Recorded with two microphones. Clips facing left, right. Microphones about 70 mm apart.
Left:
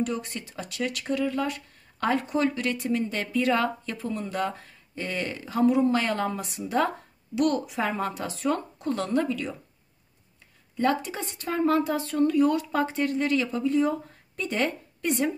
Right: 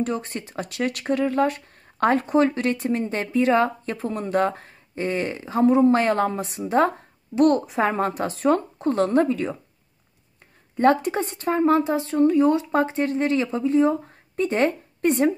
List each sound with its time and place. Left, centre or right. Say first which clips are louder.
0.0 s speech: right 3 dB; right
10.8 s speech: right 7 dB; right
11.4 s speech: right 4 dB; right